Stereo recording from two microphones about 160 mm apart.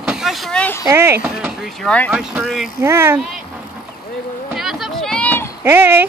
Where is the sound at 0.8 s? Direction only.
15° right (ahead or behind).